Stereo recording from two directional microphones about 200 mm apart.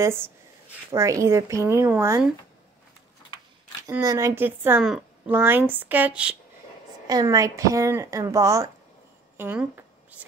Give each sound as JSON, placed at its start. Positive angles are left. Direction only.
{"t": 0.0, "sound": "speech", "side_deg": -10}
{"t": 3.9, "sound": "speech", "side_deg": -15}
{"t": 7.1, "sound": "speech", "side_deg": -20}